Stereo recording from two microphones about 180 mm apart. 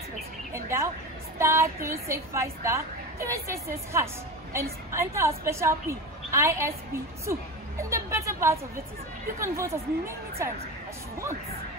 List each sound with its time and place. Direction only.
0.5 s a sound: 15° right (ahead or behind)
1.4 s a woman's voice: 15° right (ahead or behind)
4.9 s a woman's voice: 15° right (ahead or behind)